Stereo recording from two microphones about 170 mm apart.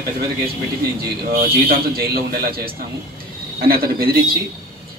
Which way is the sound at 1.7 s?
65° right (ahead or behind).